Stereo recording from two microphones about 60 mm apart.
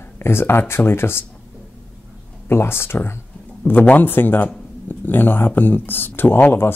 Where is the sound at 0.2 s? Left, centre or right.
Left.